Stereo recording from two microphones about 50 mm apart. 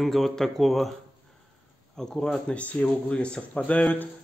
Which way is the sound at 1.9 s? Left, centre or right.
Centre.